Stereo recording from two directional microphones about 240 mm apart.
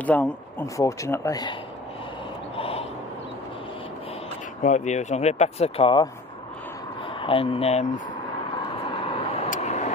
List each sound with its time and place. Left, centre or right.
0.0 s speech: centre
2.5 s gasp: left
4.6 s speech: left
7.2 s speech: left
8.9 s vehicle: left